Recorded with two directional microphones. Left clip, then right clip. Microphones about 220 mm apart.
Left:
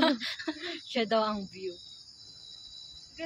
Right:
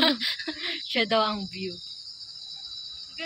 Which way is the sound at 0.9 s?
5° right (ahead or behind).